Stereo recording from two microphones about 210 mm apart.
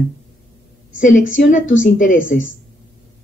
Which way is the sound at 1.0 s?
35° left (ahead or behind).